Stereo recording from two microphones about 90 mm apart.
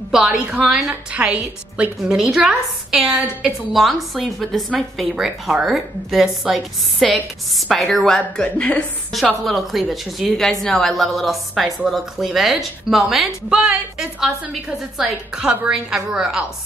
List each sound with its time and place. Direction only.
0.1 s a woman's voice: 5° right (ahead or behind)
0.5 s a woman's voice: 15° right (ahead or behind); by 8.2 s 5° left (ahead or behind)
8.5 s a woman's voice: 15° left (ahead or behind)
9.1 s a woman's voice: centre (ahead or behind)